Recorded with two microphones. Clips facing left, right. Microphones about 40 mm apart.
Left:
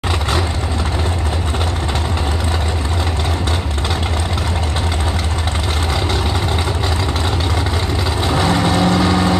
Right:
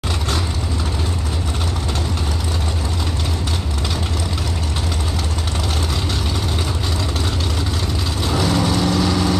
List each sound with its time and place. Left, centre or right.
8.3 s vehicle: left